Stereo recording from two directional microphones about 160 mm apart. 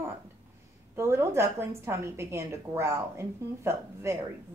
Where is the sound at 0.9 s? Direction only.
15° right (ahead or behind).